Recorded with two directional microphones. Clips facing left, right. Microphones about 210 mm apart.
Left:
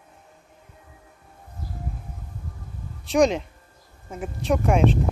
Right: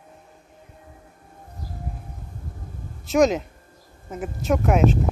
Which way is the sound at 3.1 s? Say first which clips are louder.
Right 1 dB; centre (ahead or behind).